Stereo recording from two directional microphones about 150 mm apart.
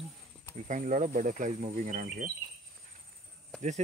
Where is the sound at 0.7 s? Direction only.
60° right (ahead or behind).